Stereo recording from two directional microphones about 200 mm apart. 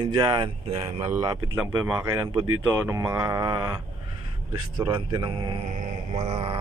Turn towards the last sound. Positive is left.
turn(degrees=-30)  # may be behind; listen again after turning